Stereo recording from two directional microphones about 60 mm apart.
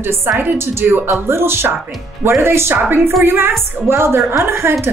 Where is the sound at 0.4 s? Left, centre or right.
Right.